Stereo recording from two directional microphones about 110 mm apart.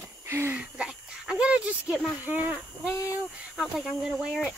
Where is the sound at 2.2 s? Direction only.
15° right (ahead or behind).